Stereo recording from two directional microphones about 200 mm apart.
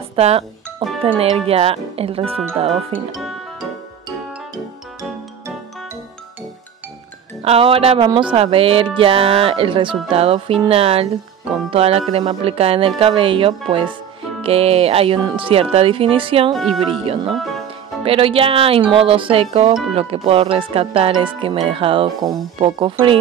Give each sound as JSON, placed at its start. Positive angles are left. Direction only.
{"t": 0.1, "sound": "music", "side_deg": -30}
{"t": 1.0, "sound": "speech", "side_deg": -30}
{"t": 7.4, "sound": "speech", "side_deg": -30}
{"t": 16.5, "sound": "speech", "side_deg": 0}
{"t": 17.0, "sound": "speech", "side_deg": -30}